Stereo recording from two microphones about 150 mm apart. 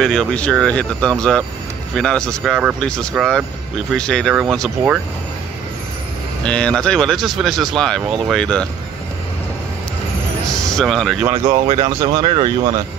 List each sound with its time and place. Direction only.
0.0 s speech: 5° left (ahead or behind)
6.4 s speech: 5° left (ahead or behind)
10.5 s speech: 5° left (ahead or behind)
11.2 s speech: 25° right (ahead or behind)